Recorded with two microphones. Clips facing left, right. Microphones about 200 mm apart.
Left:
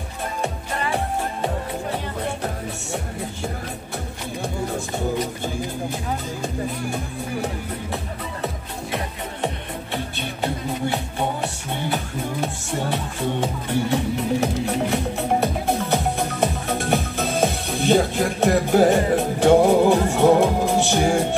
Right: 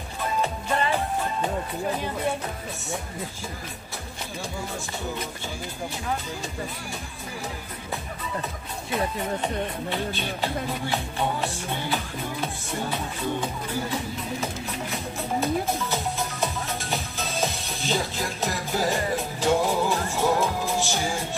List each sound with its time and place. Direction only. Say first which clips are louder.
7.4 s speech: left 6 dB; 70° left (ahead or behind)
12.9 s speech: left 4 dB; 65° left (ahead or behind)